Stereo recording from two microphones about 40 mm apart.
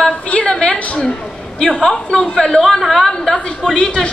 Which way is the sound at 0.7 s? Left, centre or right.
Left.